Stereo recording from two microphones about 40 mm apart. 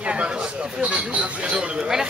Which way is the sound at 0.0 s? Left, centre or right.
Right.